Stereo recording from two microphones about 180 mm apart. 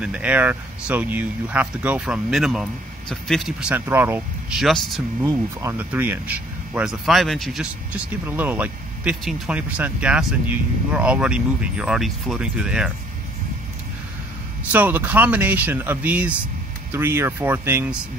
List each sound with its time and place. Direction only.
0.0 s speech: 5° right (ahead or behind)
5.2 s speech: 15° right (ahead or behind)
14.7 s speech: 10° right (ahead or behind)